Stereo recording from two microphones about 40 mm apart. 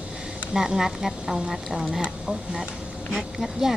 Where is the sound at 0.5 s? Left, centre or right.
Centre.